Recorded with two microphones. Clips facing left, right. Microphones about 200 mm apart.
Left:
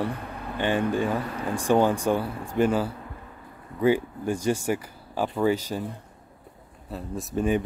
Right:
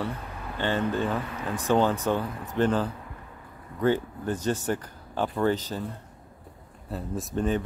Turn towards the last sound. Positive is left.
turn(degrees=0)  # may be behind; listen again after turning